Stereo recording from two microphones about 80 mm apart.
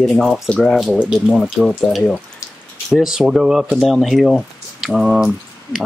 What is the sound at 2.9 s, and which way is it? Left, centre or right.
Speech, centre.